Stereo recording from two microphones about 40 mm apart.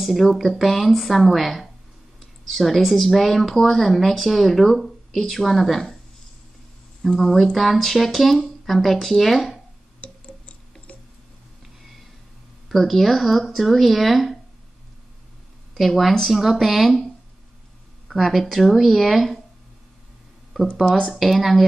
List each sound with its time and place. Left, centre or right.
0.0 s speech: centre
7.2 s speech: centre
9.9 s squish: left
12.6 s speech: centre
15.7 s speech: centre
18.0 s speech: centre
21.1 s speech: centre